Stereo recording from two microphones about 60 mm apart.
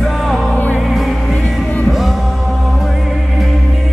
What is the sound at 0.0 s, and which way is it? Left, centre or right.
Music, centre.